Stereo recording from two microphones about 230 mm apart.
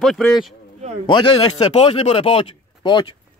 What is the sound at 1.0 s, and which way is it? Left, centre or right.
Speech, left.